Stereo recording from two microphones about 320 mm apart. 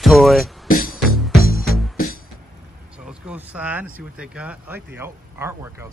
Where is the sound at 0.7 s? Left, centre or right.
Left.